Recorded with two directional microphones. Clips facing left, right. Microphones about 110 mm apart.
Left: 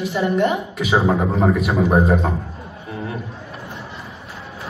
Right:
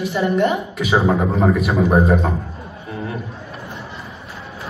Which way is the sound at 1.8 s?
20° left (ahead or behind).